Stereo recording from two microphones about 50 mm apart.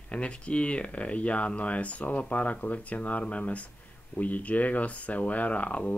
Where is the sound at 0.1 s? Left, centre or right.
Left.